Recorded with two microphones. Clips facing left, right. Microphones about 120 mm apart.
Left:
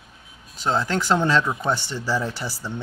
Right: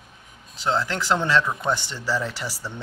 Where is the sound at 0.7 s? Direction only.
15° left (ahead or behind).